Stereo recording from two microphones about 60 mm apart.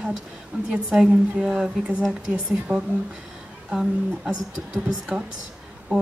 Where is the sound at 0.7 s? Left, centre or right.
Centre.